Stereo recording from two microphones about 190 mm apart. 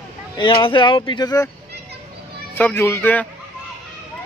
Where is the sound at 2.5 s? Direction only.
10° left (ahead or behind).